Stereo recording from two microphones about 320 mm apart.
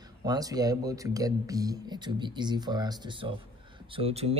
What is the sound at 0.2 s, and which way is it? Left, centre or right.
Speech, centre.